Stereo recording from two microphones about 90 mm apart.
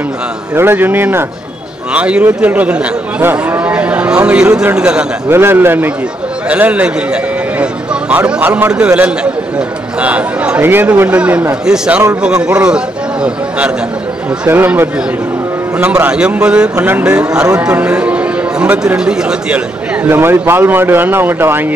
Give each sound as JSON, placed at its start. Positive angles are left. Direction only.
{"t": 0.6, "sound": "speech", "side_deg": -25}
{"t": 5.3, "sound": "a man's voice", "side_deg": -25}
{"t": 14.5, "sound": "a man's voice", "side_deg": -25}
{"t": 20.1, "sound": "speech", "side_deg": -25}